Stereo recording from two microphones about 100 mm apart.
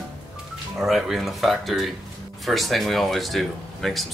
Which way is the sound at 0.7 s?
5° right (ahead or behind).